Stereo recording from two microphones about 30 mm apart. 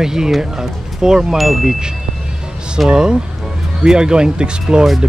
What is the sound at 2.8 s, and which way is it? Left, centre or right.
Speech, right.